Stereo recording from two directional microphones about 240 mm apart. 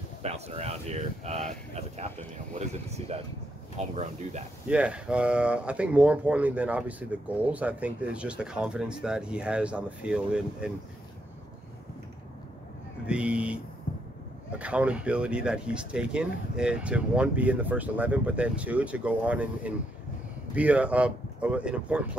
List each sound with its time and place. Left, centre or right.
0.2 s speech: right
4.6 s speech: centre
13.0 s speech: centre
14.6 s speech: centre